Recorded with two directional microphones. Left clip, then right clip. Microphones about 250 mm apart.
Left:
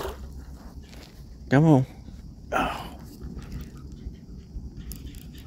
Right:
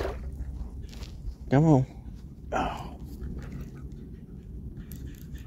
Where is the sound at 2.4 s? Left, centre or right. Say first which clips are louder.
Left 4 dB; centre.